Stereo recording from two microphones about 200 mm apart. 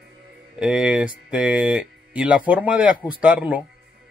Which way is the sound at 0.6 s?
5° right (ahead or behind).